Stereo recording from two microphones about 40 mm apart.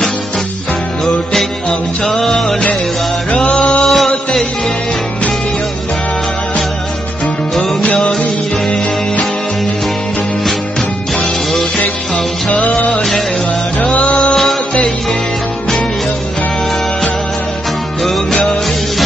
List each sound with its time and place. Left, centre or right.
1.0 s music: centre
3.3 s music: centre
3.8 s mantra: centre
7.9 s music: centre
12.4 s music: left
12.9 s music: centre
14.3 s music: centre
18.0 s music: centre